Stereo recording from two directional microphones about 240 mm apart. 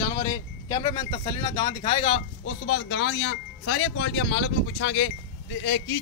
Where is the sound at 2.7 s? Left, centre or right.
Left.